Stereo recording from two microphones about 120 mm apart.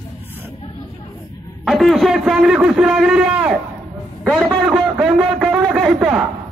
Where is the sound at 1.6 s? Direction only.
Centre (ahead or behind).